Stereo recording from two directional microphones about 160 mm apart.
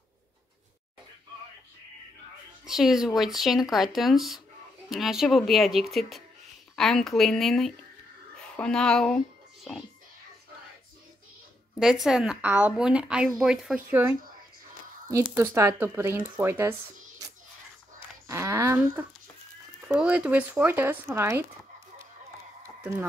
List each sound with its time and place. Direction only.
2.6 s a woman's voice: 5° right (ahead or behind)
11.8 s a woman's voice: 5° right (ahead or behind)
15.2 s speech: 15° right (ahead or behind)
18.2 s a sound: 15° right (ahead or behind)
19.9 s speech: 5° right (ahead or behind)